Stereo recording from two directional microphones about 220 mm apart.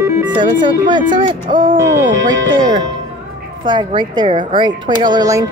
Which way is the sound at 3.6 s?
20° right (ahead or behind).